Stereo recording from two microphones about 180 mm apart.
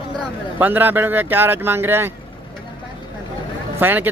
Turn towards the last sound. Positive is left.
turn(degrees=-10)  # may be behind; listen again after turning